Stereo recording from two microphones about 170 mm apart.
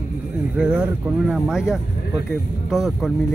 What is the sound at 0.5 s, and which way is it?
Speech, 5° right (ahead or behind).